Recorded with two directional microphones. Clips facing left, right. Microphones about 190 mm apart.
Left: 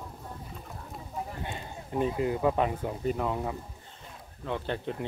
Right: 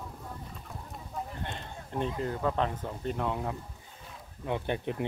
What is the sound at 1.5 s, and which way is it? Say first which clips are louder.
Speech: left 2 dB; 5° left (ahead or behind).